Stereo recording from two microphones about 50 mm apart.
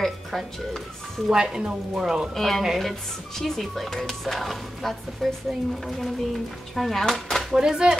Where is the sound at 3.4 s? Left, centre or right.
Centre.